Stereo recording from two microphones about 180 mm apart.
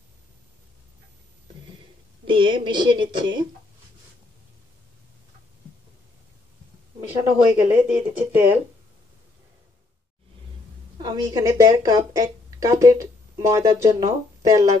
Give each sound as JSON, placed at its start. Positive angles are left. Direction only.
{"t": 2.2, "sound": "a woman's voice", "side_deg": -25}
{"t": 7.5, "sound": "speech", "side_deg": -10}
{"t": 11.0, "sound": "a woman's voice", "side_deg": -20}